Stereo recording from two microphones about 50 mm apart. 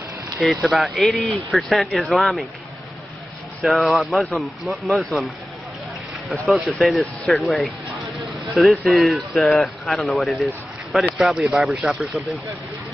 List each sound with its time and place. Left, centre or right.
0.4 s speech: centre
3.6 s speech: centre
6.4 s speech: centre
11.8 s speech: centre